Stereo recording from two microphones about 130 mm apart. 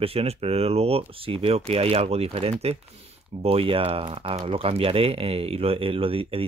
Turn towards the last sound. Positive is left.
turn(degrees=-45)  # may be behind; listen again after turning